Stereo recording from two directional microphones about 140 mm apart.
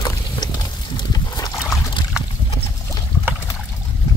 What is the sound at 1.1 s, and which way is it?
Boat, 30° left (ahead or behind).